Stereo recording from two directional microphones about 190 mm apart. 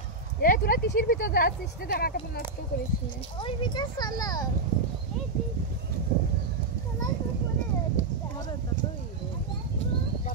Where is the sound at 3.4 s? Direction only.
25° left (ahead or behind).